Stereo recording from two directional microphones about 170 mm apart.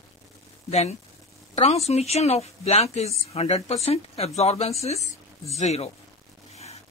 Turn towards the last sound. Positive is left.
turn(degrees=40)  # may be behind; listen again after turning